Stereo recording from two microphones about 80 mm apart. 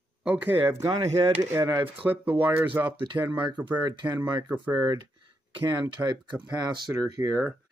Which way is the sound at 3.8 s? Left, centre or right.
Right.